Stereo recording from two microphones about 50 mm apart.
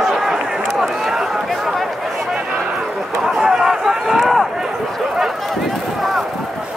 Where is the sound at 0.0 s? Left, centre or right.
Centre.